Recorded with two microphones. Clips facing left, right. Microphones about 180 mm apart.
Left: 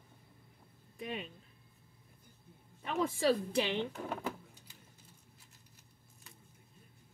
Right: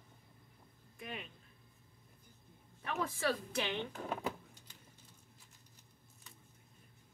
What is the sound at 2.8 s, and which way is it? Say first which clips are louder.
Speech: left 5 dB; 25° left (ahead or behind).